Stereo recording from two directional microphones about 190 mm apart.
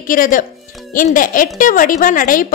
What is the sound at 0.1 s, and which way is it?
A woman's voice, 45° left (ahead or behind).